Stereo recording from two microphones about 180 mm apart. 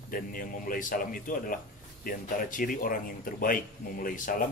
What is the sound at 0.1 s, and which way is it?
Speech, 50° left (ahead or behind).